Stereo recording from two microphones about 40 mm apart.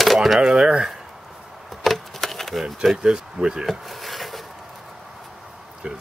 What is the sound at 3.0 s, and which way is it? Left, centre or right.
Speech, right.